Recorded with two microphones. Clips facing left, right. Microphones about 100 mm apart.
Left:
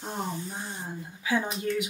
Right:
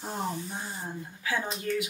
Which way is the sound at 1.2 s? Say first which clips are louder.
Left 3 dB; 15° left (ahead or behind).